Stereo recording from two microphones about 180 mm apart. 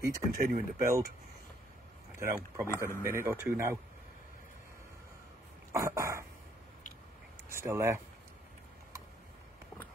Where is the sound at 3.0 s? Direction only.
15° right (ahead or behind).